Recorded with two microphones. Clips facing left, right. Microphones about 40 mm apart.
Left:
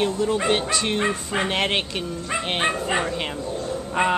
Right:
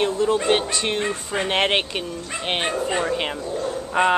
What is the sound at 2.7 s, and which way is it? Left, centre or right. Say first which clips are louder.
Speech: even; centre.